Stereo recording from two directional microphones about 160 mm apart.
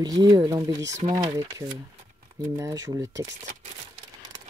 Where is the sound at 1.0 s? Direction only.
50° right (ahead or behind).